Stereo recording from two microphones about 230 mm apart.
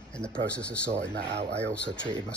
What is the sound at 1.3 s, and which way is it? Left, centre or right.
Speech, right.